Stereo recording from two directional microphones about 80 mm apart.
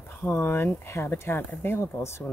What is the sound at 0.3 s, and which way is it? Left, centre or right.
Speech, left.